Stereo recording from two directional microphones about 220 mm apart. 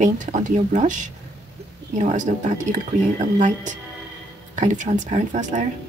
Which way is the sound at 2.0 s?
30° right (ahead or behind).